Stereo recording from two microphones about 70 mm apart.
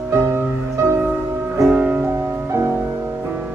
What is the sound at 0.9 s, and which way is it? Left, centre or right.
Music, right.